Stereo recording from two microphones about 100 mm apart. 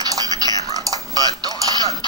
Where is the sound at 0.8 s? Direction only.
40° right (ahead or behind).